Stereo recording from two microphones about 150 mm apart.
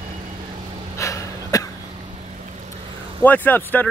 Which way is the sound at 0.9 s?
20° left (ahead or behind).